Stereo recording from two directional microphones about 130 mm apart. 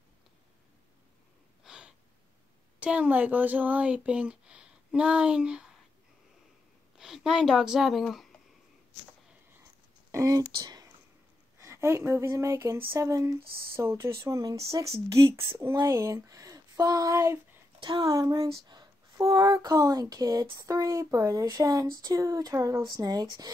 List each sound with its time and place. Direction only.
1.6 s a sound: 5° right (ahead or behind)
2.8 s speech: 10° right (ahead or behind)
7.0 s speech: 5° right (ahead or behind)
10.1 s speech: 25° right (ahead or behind)
11.6 s speech: 20° right (ahead or behind)
15.9 s speech: 20° right (ahead or behind)
17.7 s speech: 35° right (ahead or behind)